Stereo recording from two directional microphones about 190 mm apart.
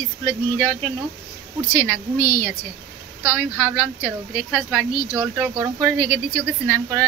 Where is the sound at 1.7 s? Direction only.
15° left (ahead or behind).